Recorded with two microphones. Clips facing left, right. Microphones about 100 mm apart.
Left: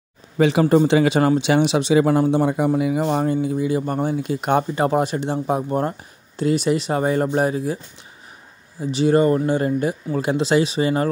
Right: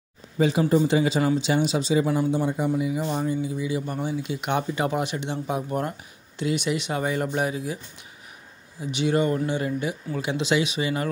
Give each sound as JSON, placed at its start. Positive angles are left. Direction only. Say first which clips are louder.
{"t": 0.4, "sound": "speech", "louder": "left 5 dB", "side_deg": 75}
{"t": 8.9, "sound": "speech", "louder": "left 6 dB", "side_deg": 40}